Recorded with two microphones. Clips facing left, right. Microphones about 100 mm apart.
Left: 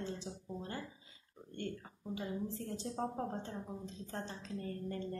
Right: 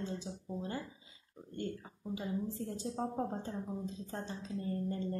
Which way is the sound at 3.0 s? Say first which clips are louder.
Right 1 dB; 5° right (ahead or behind).